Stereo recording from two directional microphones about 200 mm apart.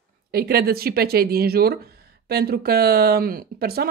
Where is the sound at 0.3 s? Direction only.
50° right (ahead or behind).